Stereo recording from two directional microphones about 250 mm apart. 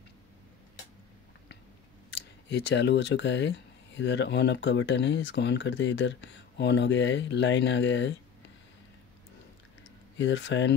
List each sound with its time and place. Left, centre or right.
2.1 s speech: left
10.1 s speech: left